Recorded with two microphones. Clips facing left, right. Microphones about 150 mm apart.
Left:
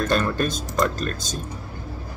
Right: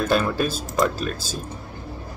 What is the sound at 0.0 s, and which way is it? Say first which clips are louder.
Speech: right 1 dB; 5° right (ahead or behind).